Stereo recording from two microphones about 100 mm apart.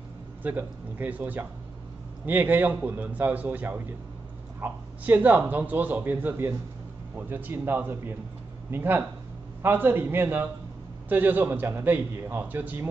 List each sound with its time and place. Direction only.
0.4 s a man's voice: 20° right (ahead or behind)